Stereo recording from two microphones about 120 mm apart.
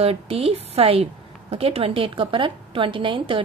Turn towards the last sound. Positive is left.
turn(degrees=-45)  # may be behind; listen again after turning